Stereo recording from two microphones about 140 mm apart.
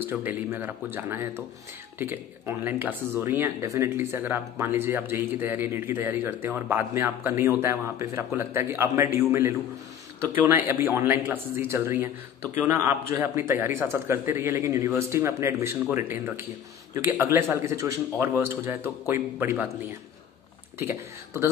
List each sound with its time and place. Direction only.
0.0 s speech: 15° right (ahead or behind)
20.8 s speech: 20° right (ahead or behind)